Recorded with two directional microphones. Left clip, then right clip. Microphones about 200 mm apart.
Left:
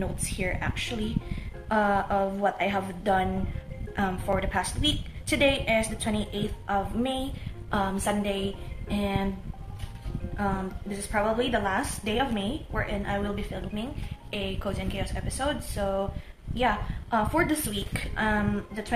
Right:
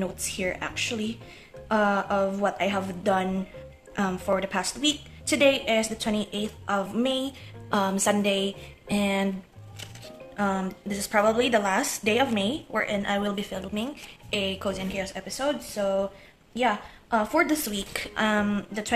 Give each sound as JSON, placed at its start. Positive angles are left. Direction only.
{"t": 0.0, "sound": "speech", "side_deg": -25}
{"t": 10.3, "sound": "speech", "side_deg": -35}